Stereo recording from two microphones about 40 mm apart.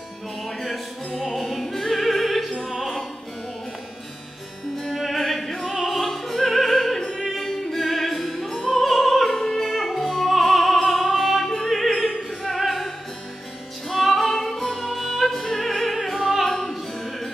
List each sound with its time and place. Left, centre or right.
0.6 s music: centre
1.4 s opera: centre
2.8 s music: centre
4.9 s music: centre
7.0 s opera: left
7.4 s opera: centre
9.6 s music: centre
11.7 s opera: centre
13.8 s music: centre